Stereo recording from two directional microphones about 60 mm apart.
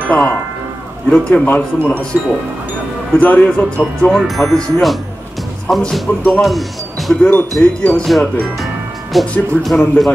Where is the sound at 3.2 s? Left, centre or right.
Left.